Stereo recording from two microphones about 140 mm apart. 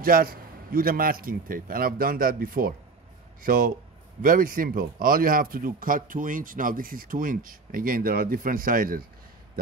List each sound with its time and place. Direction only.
0.0 s a man's voice: 90° right
3.4 s speech: 80° right